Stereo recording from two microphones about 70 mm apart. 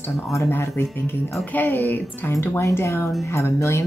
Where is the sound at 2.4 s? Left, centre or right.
Left.